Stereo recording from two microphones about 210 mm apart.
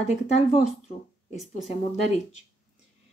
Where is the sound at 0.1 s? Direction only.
30° left (ahead or behind).